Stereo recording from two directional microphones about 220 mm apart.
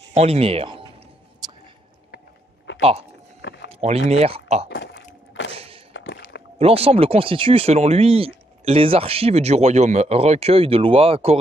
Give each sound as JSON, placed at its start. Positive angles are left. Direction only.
{"t": 0.1, "sound": "speech", "side_deg": -30}
{"t": 2.0, "sound": "walk", "side_deg": 50}
{"t": 3.6, "sound": "vehicle", "side_deg": -30}
{"t": 4.1, "sound": "speech", "side_deg": -30}
{"t": 4.6, "sound": "a sound", "side_deg": 55}
{"t": 5.5, "sound": "thunk", "side_deg": -25}
{"t": 5.9, "sound": "a sound", "side_deg": 50}
{"t": 6.6, "sound": "speech", "side_deg": -25}